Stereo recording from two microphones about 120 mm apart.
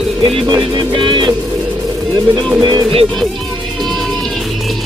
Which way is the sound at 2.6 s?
45° right (ahead or behind).